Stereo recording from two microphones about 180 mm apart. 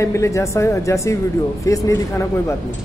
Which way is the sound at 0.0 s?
15° left (ahead or behind).